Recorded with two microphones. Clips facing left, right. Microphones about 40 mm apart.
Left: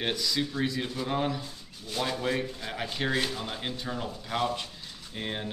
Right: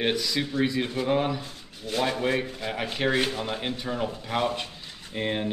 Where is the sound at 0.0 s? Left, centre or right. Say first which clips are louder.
Right 3 dB; right.